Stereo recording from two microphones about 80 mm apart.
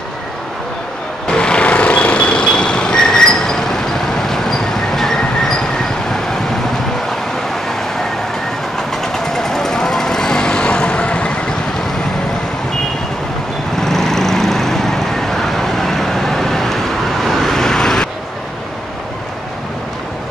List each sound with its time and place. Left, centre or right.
1.2 s vehicle: centre
9.1 s vehicle: centre
13.7 s vehicle: centre